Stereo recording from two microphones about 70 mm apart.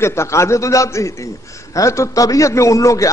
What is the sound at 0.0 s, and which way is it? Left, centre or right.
A man's voice, left.